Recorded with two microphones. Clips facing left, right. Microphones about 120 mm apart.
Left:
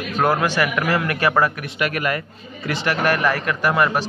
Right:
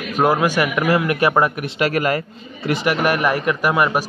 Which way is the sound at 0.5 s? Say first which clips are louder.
Right 3 dB; 20° right (ahead or behind).